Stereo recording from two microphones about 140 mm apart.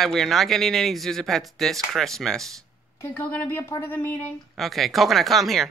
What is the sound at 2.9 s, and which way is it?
A woman's voice, 15° left (ahead or behind).